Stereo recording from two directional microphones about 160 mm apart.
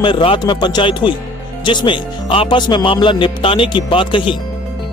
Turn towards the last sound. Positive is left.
turn(degrees=30)  # may be behind; listen again after turning